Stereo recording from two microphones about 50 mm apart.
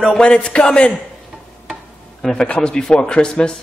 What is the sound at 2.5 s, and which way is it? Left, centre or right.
Speech, centre.